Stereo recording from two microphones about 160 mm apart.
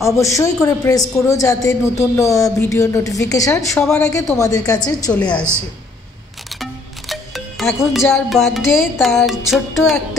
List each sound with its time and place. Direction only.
0.0 s speech: 20° left (ahead or behind)
5.1 s a woman's voice: 10° left (ahead or behind)
6.6 s music: centre (ahead or behind)